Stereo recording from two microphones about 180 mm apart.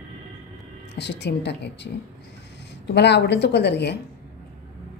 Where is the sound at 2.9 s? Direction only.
70° left (ahead or behind).